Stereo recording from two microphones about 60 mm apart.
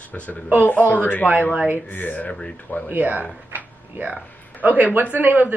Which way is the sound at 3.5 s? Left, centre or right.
Right.